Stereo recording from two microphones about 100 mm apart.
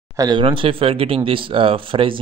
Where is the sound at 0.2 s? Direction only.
50° right (ahead or behind).